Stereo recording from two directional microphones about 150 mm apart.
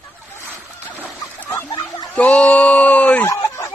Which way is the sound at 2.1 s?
10° left (ahead or behind).